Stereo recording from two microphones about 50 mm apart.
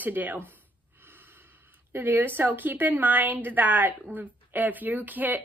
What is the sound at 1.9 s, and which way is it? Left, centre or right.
A woman's voice, right.